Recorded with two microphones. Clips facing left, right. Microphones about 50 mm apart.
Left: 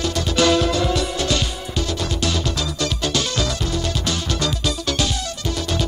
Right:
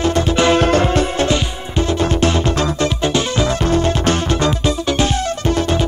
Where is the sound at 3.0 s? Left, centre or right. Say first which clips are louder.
Right 4 dB; right.